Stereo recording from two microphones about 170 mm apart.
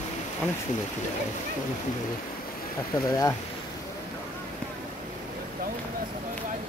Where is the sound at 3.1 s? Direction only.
20° left (ahead or behind).